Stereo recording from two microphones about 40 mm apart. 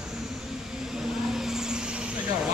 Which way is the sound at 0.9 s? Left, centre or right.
Centre.